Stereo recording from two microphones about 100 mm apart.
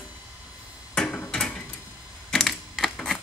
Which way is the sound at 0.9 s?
10° left (ahead or behind).